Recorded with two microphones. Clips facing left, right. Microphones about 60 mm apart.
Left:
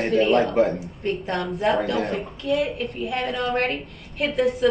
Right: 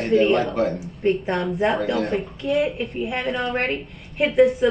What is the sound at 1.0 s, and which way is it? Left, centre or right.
Speech, centre.